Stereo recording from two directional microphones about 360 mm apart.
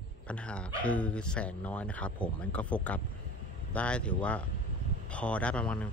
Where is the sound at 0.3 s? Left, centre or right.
Centre.